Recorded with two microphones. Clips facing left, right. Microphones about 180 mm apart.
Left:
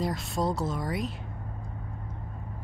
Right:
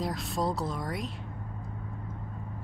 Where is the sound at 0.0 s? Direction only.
Centre (ahead or behind).